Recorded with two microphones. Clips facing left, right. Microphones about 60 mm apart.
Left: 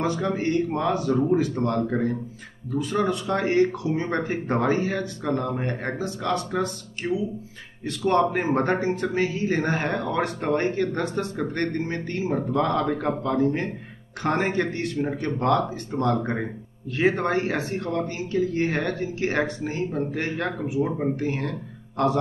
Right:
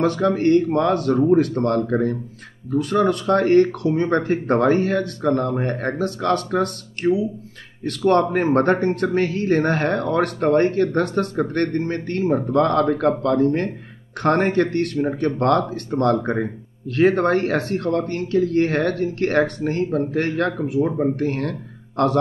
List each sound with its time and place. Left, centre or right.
0.0 s speech: right